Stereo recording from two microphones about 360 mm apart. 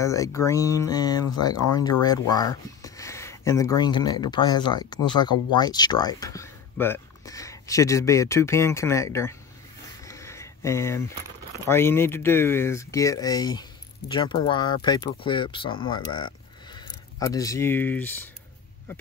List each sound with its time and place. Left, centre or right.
0.0 s speech: centre
1.5 s speech: left
2.0 s speech: centre
10.0 s a sound: centre
11.6 s speech: centre